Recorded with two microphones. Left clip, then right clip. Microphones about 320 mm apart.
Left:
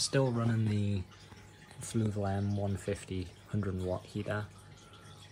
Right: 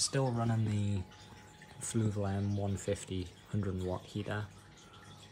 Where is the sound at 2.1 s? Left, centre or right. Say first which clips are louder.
Left 2 dB; left.